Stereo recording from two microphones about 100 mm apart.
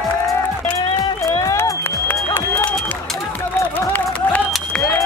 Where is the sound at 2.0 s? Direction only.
25° left (ahead or behind).